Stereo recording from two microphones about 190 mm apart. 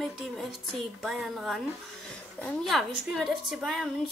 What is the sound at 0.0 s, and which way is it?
A woman's voice, centre (ahead or behind).